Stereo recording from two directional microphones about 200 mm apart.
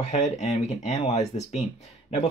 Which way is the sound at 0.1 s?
35° left (ahead or behind).